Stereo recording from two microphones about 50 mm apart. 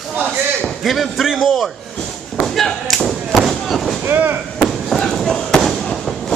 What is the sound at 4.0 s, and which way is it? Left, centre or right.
Chop, right.